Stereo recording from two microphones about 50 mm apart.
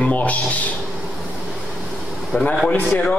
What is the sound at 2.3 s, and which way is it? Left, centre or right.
Speech, centre.